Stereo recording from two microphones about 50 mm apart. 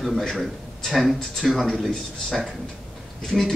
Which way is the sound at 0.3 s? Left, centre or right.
Centre.